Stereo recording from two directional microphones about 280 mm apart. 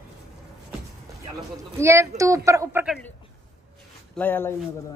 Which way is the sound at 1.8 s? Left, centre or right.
Centre.